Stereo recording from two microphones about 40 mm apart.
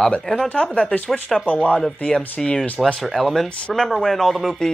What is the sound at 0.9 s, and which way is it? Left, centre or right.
Speech, left.